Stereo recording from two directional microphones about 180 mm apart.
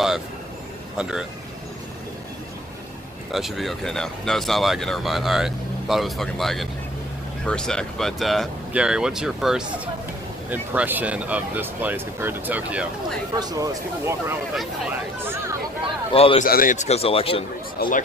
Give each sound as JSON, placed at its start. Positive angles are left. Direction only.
{"t": 3.3, "sound": "speech", "side_deg": 0}
{"t": 13.4, "sound": "speech", "side_deg": -20}
{"t": 16.1, "sound": "a man's voice", "side_deg": 30}
{"t": 16.4, "sound": "a man's voice", "side_deg": 50}
{"t": 17.7, "sound": "speech", "side_deg": 50}